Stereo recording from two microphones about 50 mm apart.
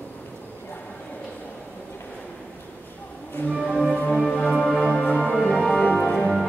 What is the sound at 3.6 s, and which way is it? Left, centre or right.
Music, centre.